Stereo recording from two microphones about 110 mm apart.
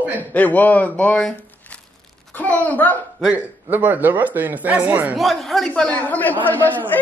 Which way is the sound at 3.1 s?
15° right (ahead or behind).